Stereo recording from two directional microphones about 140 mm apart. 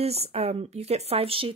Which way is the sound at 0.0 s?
45° right (ahead or behind).